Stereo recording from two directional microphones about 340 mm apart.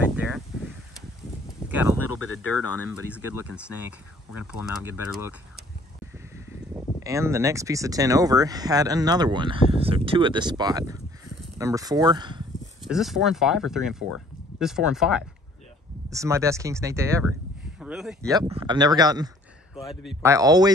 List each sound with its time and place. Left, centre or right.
2.0 s speech: left
7.0 s speech: centre
12.8 s speech: centre